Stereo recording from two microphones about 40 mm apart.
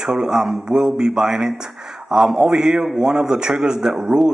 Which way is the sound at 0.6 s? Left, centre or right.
Right.